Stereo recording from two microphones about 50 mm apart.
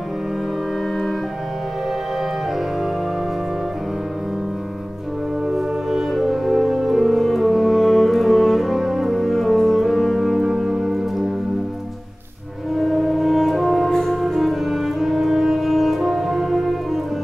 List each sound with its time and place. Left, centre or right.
5.5 s music: centre
12.7 s music: centre
13.8 s music: centre
14.2 s music: centre